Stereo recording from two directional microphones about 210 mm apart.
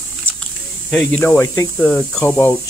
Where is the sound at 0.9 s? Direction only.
5° left (ahead or behind).